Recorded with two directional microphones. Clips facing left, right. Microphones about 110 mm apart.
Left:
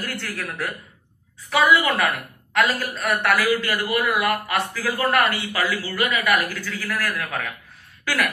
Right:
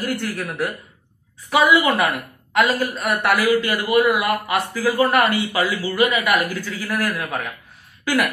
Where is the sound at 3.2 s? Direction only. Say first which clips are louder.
Right 4 dB; 15° right (ahead or behind).